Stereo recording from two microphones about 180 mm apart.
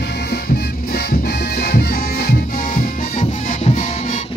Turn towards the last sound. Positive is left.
turn(degrees=45)  # may be behind; listen again after turning